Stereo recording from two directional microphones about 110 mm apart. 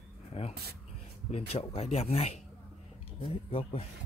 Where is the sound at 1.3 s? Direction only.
65° left (ahead or behind).